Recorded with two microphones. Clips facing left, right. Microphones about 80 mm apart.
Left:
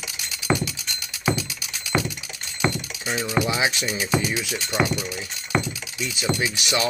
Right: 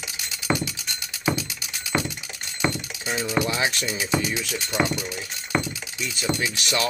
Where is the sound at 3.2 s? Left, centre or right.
Centre.